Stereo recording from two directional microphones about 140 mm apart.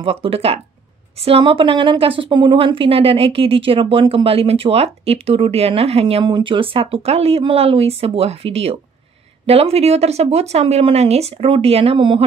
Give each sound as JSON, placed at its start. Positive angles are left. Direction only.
{"t": 0.0, "sound": "a woman's voice", "side_deg": -40}